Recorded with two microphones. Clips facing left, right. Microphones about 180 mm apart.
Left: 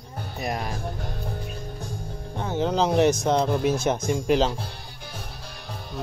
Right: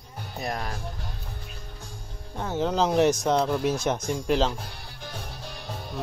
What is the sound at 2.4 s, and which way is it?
Speech, centre (ahead or behind).